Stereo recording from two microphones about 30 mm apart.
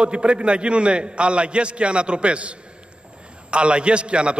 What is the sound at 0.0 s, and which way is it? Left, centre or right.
A man's voice, right.